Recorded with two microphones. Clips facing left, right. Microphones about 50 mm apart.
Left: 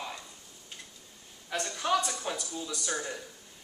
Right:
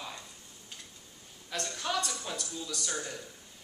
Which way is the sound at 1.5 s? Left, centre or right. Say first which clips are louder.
Left 5 dB; centre.